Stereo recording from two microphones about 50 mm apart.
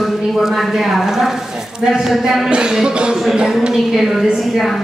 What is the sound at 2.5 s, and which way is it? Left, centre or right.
Speech, centre.